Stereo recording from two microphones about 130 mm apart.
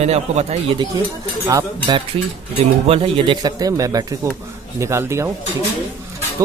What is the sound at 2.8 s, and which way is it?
Speech, 50° right (ahead or behind).